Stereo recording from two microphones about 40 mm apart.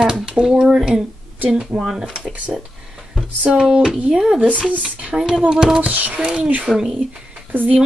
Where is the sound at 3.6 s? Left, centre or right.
Right.